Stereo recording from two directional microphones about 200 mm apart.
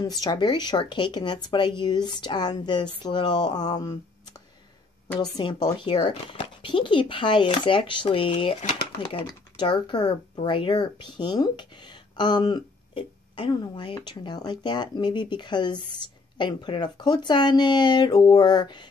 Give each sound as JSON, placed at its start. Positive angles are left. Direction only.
{"t": 0.2, "sound": "speech", "side_deg": 20}
{"t": 5.2, "sound": "speech", "side_deg": 20}